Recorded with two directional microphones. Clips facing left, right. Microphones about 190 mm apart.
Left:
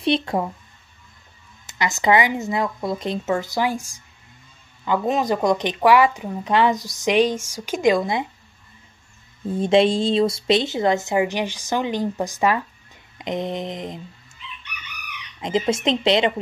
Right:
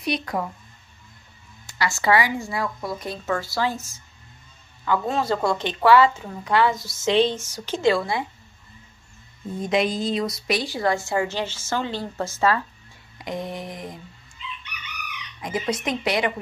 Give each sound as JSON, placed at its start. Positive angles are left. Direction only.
{"t": 0.0, "sound": "a woman's voice", "side_deg": 25}
{"t": 1.7, "sound": "a woman's voice", "side_deg": 20}
{"t": 9.6, "sound": "a woman's voice", "side_deg": 30}
{"t": 15.4, "sound": "a woman's voice", "side_deg": 25}